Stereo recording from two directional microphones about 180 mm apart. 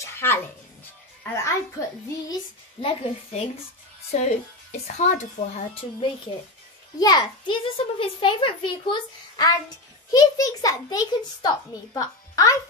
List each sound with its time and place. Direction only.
0.0 s music: 15° left (ahead or behind)
1.2 s speech: 15° left (ahead or behind)
2.8 s a child's voice: 35° left (ahead or behind)
5.8 s a child's voice: 30° left (ahead or behind)